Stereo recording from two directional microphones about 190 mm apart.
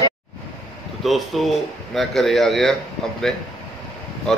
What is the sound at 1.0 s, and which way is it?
Speech, centre (ahead or behind).